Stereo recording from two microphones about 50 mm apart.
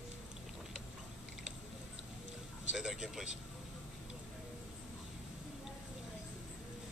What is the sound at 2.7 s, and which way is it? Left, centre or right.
Vehicle, centre.